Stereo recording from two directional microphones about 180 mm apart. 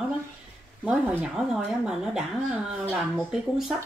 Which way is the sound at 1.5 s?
5° right (ahead or behind).